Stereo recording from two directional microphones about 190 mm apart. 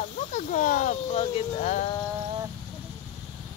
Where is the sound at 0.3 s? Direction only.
40° left (ahead or behind).